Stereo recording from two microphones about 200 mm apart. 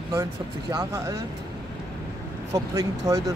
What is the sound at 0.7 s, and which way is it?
Speech, 20° right (ahead or behind).